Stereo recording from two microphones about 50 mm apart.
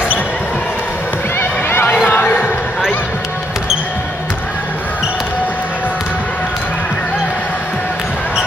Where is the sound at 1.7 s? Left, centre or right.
Left.